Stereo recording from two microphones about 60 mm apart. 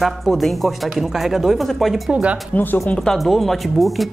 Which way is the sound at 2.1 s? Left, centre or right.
Right.